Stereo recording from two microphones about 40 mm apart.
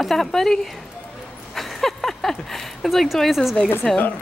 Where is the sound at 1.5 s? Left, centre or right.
Centre.